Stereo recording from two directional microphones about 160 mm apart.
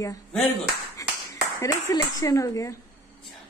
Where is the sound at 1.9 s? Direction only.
20° left (ahead or behind).